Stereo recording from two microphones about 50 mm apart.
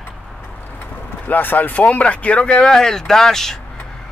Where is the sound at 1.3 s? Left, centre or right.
Left.